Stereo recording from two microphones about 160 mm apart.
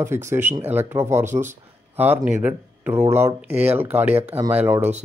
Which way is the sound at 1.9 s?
10° right (ahead or behind).